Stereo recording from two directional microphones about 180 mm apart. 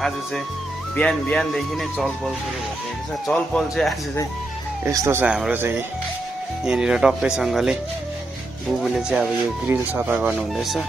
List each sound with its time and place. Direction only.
0.9 s speech: 5° left (ahead or behind)
3.3 s speech: centre (ahead or behind)
4.8 s speech: 15° right (ahead or behind)
9.1 s speech: 5° right (ahead or behind)